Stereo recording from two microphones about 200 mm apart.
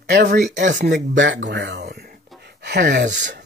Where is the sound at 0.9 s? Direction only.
70° right (ahead or behind).